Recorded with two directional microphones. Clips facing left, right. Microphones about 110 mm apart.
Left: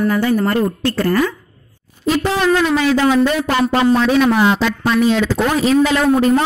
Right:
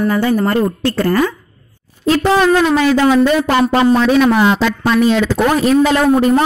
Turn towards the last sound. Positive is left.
turn(degrees=-50)  # may be behind; listen again after turning